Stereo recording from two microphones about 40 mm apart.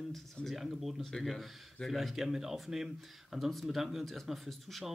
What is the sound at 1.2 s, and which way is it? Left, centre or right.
Speech, centre.